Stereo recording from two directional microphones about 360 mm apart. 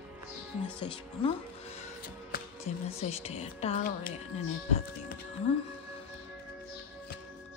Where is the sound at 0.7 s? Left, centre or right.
Centre.